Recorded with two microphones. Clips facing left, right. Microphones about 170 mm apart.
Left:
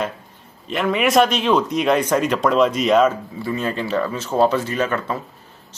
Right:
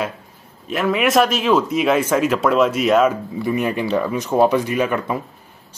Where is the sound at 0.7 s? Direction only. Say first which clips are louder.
Right 1 dB; centre (ahead or behind).